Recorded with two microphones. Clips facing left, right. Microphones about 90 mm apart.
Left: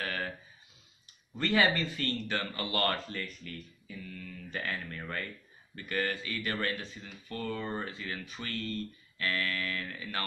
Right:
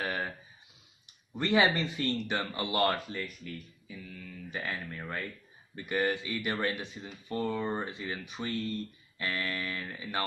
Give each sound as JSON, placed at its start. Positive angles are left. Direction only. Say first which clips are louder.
{"t": 0.0, "sound": "a sound", "louder": "right 2 dB", "side_deg": -20}
{"t": 1.3, "sound": "speech", "louder": "right 2 dB", "side_deg": -20}
{"t": 5.8, "sound": "speech", "louder": "right 3 dB", "side_deg": -20}